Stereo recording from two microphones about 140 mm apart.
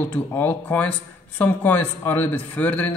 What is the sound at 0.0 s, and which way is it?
A man's voice, 15° left (ahead or behind).